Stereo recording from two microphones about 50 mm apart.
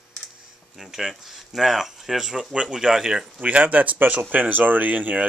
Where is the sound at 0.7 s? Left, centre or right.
Centre.